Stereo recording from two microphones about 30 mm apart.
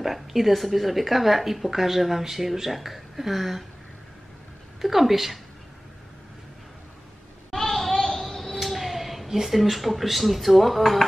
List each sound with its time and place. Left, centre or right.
0.0 s speech: centre
4.8 s speech: centre
7.5 s a sound: centre
8.5 s cat: centre
9.6 s speech: centre